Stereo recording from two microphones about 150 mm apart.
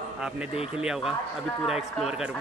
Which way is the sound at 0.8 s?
5° right (ahead or behind).